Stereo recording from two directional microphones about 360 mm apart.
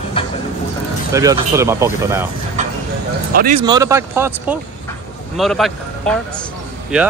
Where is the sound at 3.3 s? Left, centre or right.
Centre.